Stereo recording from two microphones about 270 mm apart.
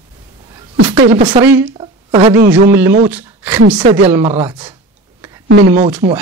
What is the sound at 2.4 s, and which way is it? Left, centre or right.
Speech, centre.